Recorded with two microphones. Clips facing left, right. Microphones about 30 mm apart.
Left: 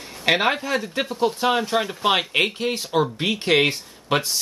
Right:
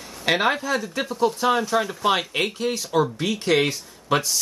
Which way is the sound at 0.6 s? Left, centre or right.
Left.